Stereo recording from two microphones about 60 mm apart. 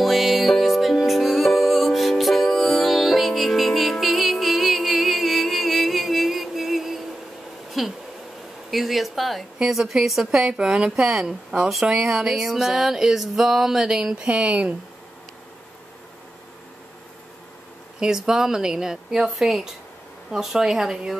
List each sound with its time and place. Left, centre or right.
0.0 s music: centre
7.8 s a sound: centre
9.6 s a woman's voice: centre
10.4 s music: centre
14.2 s speech: right
17.9 s music: centre
19.2 s a woman's voice: centre
20.2 s music: centre